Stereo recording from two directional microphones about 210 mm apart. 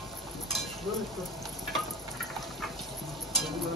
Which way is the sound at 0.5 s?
Centre (ahead or behind).